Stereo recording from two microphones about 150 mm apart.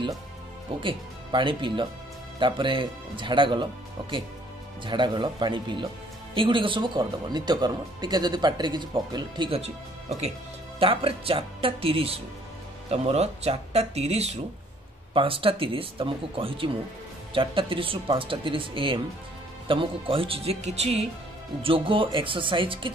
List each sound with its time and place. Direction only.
0.8 s speech: 35° right (ahead or behind)
4.8 s speech: 30° right (ahead or behind)
9.6 s speech: 45° right (ahead or behind)